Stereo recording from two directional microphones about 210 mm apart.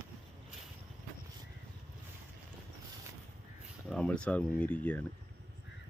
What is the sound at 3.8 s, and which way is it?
Speech, 5° left (ahead or behind).